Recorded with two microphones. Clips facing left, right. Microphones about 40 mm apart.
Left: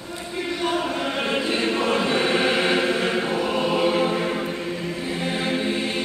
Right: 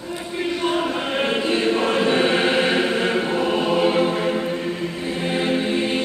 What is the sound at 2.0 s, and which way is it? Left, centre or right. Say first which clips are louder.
Choir: right 4 dB; right.